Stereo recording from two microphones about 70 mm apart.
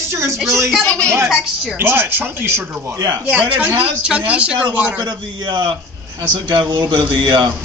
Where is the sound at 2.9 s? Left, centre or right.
Right.